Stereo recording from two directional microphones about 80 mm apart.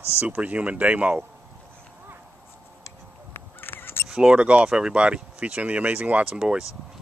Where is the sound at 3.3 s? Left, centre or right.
Left.